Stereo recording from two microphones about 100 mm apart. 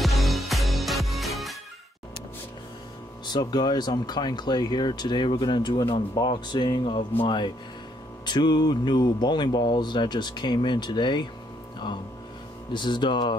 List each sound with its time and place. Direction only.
0.0 s music: centre (ahead or behind)
3.3 s speech: 45° left (ahead or behind)
12.7 s speech: 50° left (ahead or behind)